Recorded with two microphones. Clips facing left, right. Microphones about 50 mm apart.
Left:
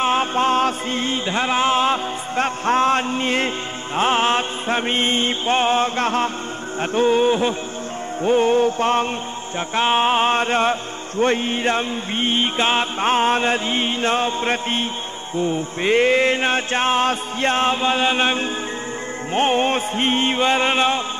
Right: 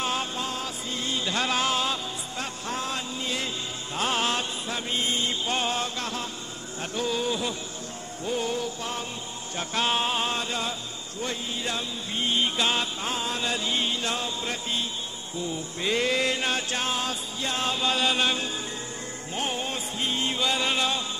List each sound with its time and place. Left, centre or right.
0.0 s music: left
6.8 s mantra: left
8.2 s music: left
9.6 s music: left
15.3 s mantra: left
19.3 s music: left